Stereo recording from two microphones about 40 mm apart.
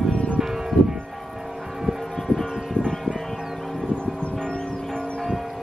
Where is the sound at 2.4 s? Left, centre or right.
Centre.